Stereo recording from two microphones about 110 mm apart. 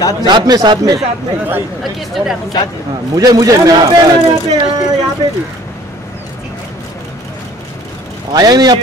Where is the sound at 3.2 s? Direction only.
35° right (ahead or behind).